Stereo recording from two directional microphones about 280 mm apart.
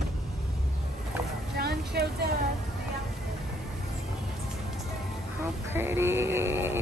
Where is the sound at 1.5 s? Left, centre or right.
Right.